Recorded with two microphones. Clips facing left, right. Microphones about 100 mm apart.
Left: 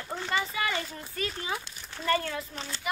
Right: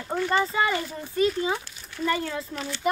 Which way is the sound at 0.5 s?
25° right (ahead or behind).